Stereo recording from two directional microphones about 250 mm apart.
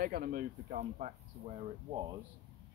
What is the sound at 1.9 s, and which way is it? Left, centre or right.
Speech, centre.